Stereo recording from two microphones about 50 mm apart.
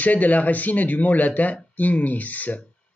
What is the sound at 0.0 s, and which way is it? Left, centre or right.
Speech, left.